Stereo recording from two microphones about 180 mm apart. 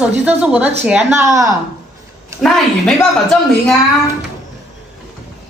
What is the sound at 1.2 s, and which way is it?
Speech, 20° right (ahead or behind).